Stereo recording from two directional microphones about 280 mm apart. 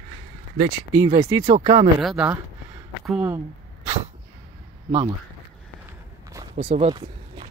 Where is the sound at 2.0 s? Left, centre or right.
Centre.